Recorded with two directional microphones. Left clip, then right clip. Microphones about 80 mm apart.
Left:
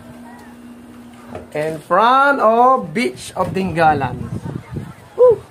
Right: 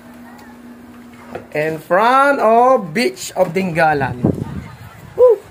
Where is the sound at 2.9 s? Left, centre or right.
Right.